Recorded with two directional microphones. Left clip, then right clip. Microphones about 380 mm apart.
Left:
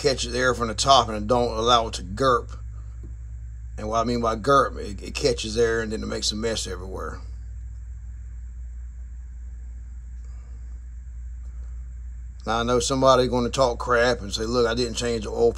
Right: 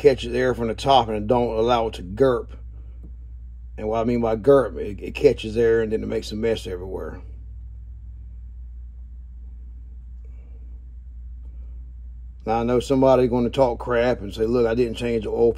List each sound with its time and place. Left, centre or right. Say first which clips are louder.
0.0 s speech: right 4 dB; centre
3.9 s speech: right 1 dB; centre
12.4 s speech: right 2 dB; centre